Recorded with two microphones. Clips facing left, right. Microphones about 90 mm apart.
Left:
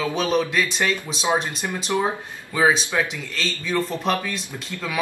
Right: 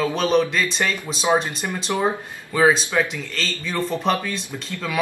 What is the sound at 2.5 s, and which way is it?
Speech, centre (ahead or behind).